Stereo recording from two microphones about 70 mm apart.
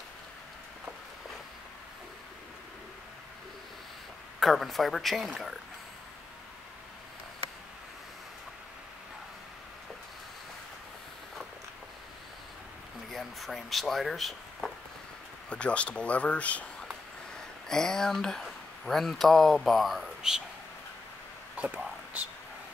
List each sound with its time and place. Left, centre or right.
4.4 s speech: centre
13.1 s speech: centre
15.5 s speech: centre
17.6 s speech: centre
21.5 s whispering: right